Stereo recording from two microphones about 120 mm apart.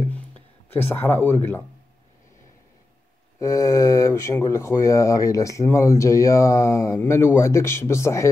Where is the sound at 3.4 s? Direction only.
30° left (ahead or behind).